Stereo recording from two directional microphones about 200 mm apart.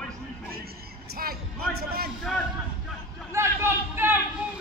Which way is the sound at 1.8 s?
50° right (ahead or behind).